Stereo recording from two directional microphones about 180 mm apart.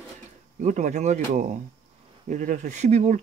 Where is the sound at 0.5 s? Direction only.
45° right (ahead or behind).